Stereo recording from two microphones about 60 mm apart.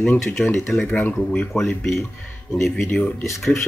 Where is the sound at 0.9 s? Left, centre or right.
Left.